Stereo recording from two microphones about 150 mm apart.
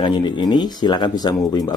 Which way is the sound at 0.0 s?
30° left (ahead or behind).